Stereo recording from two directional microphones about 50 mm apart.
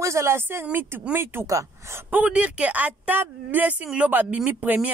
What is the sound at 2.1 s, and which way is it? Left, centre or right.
A woman's voice, right.